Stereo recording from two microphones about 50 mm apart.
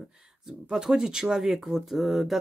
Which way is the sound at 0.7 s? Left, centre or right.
Centre.